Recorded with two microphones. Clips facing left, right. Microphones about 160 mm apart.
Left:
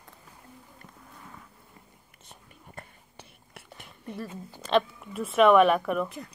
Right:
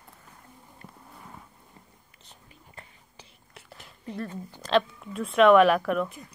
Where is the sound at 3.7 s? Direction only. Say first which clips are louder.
Right 1 dB; 60° left (ahead or behind).